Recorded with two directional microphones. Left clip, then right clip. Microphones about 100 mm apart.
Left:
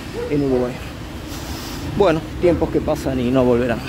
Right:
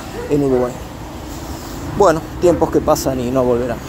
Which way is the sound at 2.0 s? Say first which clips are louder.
Right 4 dB; 20° left (ahead or behind).